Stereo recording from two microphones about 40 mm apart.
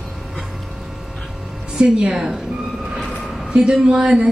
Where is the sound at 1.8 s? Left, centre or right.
Right.